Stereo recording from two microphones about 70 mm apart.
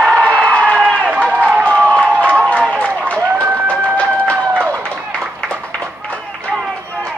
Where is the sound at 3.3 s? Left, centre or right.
Right.